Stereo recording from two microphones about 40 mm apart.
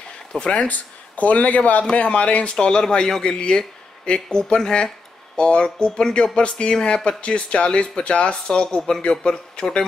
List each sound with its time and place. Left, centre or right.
0.3 s speech: left
0.6 s speech: left
2.5 s speech: centre